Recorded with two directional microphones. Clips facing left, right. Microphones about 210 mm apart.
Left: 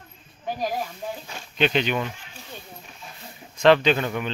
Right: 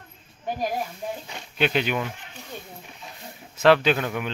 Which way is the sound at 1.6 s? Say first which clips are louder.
Left 1 dB; 5° right (ahead or behind).